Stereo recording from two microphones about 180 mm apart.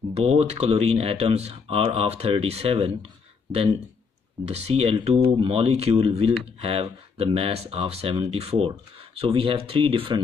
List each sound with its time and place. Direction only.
0.1 s speech: 35° right (ahead or behind)
4.5 s speech: 35° right (ahead or behind)